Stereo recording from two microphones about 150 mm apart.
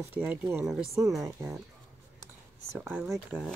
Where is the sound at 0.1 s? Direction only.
10° right (ahead or behind).